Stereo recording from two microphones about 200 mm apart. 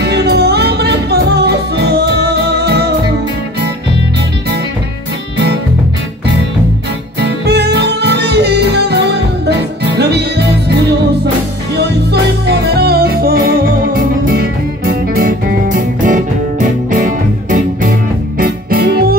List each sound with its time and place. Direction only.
0.0 s music: 55° right (ahead or behind)
7.2 s music: 55° right (ahead or behind)